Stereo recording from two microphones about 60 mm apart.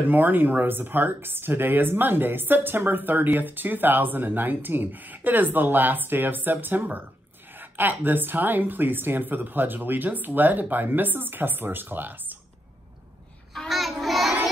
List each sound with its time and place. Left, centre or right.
0.1 s speech: right
13.6 s child singing: centre